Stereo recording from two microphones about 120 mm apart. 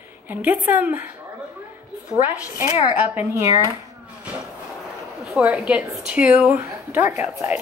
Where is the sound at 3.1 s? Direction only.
15° right (ahead or behind).